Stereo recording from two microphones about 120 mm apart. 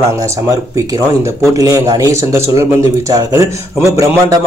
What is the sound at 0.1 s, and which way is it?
Speech, 25° right (ahead or behind).